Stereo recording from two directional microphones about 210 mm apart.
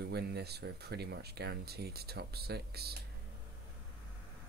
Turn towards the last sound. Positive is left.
turn(degrees=-50)  # may be behind; listen again after turning